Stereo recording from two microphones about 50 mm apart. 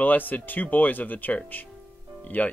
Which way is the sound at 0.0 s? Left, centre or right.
Left.